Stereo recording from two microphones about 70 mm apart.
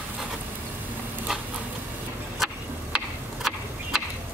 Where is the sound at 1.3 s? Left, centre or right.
Centre.